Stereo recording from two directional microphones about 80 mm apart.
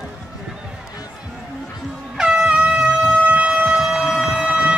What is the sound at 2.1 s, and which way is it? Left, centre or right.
Shofar, centre.